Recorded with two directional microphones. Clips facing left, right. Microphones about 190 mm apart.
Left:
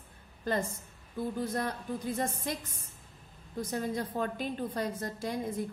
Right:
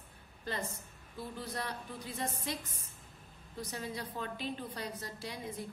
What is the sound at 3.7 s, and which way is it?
A woman's voice, 50° left (ahead or behind).